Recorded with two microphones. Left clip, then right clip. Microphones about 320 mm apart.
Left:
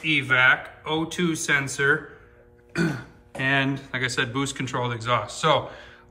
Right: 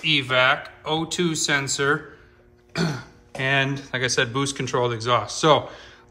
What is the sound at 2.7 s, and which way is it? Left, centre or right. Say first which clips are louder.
Speech: even; centre.